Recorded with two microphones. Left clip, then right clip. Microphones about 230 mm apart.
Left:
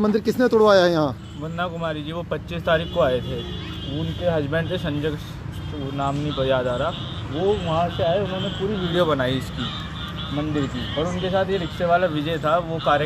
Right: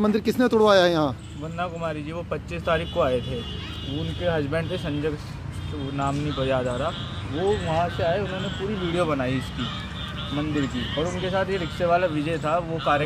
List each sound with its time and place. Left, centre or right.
0.0 s speech: centre
4.3 s speech: centre
8.9 s speech: centre
10.3 s speech: centre